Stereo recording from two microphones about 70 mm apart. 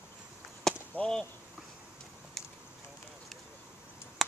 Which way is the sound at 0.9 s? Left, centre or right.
Centre.